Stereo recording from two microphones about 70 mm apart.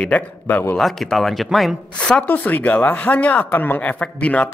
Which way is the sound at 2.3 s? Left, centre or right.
Left.